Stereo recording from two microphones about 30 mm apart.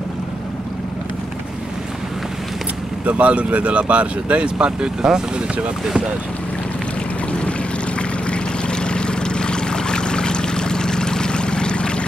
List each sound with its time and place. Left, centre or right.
3.1 s speech: right
4.4 s speech: right
8.3 s boat: left